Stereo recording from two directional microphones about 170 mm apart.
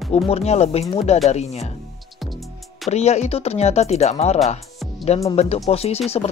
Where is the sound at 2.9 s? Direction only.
40° left (ahead or behind).